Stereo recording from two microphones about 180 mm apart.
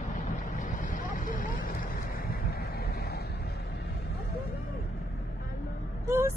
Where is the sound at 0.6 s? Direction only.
45° left (ahead or behind).